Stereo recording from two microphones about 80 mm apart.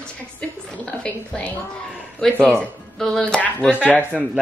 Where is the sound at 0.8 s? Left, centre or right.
Centre.